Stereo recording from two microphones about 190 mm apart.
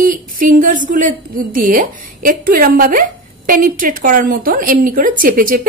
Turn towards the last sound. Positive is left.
turn(degrees=-45)  # may be behind; listen again after turning